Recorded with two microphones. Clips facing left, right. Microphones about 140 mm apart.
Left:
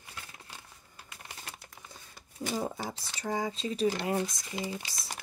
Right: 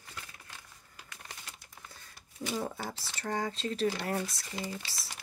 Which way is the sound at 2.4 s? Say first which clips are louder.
Left 2 dB; 20° left (ahead or behind).